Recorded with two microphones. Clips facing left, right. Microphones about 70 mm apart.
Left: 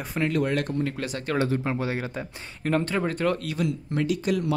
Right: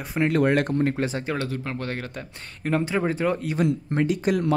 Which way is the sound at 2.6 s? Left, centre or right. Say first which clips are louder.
Right 1 dB; centre.